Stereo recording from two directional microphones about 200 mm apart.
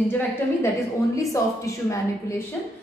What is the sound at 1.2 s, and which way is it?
A woman's voice, 15° left (ahead or behind).